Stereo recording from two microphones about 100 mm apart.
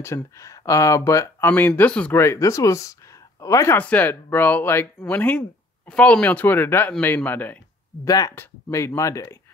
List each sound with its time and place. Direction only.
0.0 s speech: 30° left (ahead or behind)
1.5 s speech: 15° left (ahead or behind)
2.1 s speech: 30° left (ahead or behind)
3.7 s speech: 15° left (ahead or behind)
8.0 s speech: 35° left (ahead or behind)
8.4 s speech: 25° left (ahead or behind)